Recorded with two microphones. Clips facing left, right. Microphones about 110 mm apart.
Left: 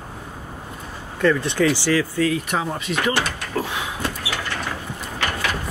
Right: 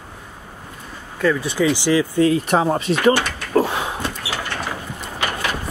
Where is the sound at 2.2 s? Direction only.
35° right (ahead or behind).